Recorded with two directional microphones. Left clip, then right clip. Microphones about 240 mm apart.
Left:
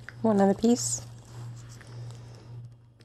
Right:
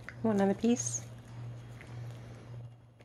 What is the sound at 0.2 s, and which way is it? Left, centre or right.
Speech, left.